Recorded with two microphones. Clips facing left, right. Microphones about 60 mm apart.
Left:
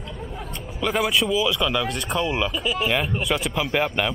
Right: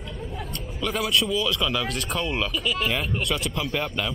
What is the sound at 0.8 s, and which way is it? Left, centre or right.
Speech, centre.